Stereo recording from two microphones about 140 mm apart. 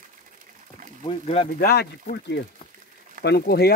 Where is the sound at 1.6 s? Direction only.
90° left.